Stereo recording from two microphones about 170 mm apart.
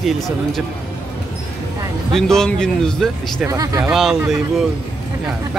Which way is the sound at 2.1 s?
5° left (ahead or behind).